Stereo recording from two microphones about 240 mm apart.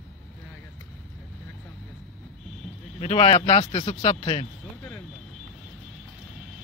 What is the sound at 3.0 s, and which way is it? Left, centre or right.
A man's voice, left.